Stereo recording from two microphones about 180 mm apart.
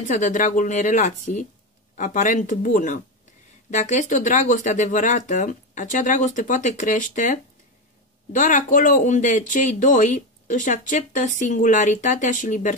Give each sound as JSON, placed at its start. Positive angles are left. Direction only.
{"t": 0.2, "sound": "speech", "side_deg": 45}